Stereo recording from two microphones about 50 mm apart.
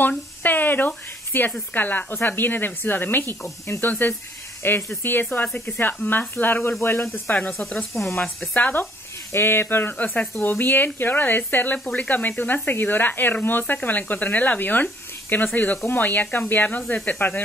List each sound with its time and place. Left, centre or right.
0.4 s a sound: left
1.7 s speech: left
6.8 s speech: left
7.3 s speech: left
7.9 s speech: centre
8.5 s speech: left
9.3 s speech: left
9.9 s speech: left
11.7 s speech: left